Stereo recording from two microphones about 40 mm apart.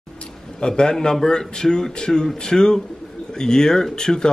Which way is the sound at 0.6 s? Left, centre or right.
Left.